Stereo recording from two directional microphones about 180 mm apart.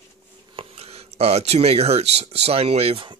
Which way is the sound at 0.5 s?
35° right (ahead or behind).